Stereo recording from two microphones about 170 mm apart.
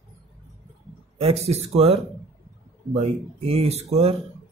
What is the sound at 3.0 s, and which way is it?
Speech, 35° right (ahead or behind).